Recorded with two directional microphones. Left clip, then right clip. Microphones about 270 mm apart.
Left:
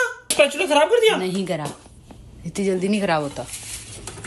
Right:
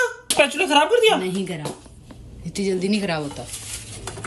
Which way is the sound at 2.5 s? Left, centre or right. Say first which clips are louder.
Left 1 dB; left.